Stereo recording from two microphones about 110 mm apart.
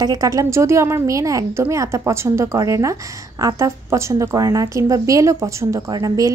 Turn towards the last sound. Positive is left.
turn(degrees=-35)  # may be behind; listen again after turning